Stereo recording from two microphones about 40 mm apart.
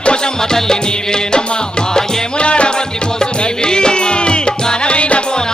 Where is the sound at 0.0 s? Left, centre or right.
Left.